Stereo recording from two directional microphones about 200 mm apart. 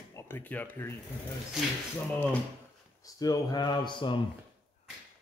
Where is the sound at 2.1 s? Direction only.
10° left (ahead or behind).